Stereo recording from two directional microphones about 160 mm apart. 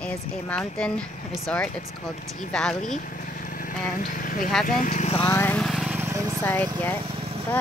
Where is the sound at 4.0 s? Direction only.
60° left (ahead or behind).